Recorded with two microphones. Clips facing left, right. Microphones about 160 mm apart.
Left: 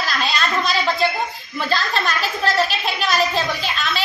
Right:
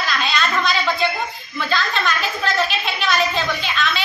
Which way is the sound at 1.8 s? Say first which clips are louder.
Even; 35° left (ahead or behind).